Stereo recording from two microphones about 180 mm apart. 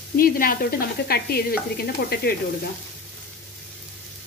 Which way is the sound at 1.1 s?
60° left (ahead or behind).